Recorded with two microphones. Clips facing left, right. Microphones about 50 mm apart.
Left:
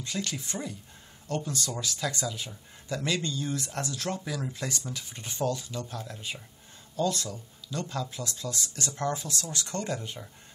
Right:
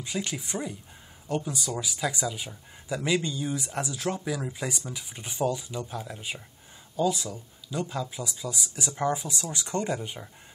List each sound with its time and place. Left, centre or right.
0.0 s speech: centre